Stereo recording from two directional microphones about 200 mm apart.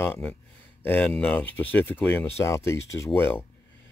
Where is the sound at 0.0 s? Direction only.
10° left (ahead or behind).